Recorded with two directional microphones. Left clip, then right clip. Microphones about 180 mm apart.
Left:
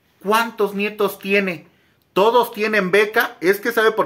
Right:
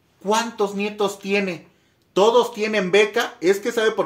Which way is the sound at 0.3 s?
15° left (ahead or behind).